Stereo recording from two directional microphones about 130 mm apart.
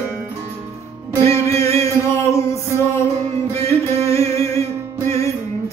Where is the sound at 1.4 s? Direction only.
25° left (ahead or behind).